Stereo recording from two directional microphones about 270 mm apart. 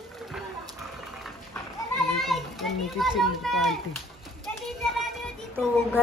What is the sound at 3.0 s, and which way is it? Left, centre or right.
Speech, centre.